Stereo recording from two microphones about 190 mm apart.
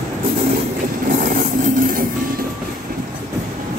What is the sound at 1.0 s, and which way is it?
Train, 45° right (ahead or behind).